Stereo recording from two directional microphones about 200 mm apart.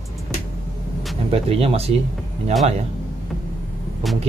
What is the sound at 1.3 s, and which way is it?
Speech, 30° right (ahead or behind).